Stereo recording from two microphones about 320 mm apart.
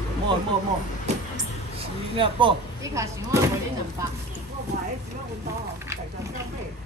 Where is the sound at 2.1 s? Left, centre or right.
Centre.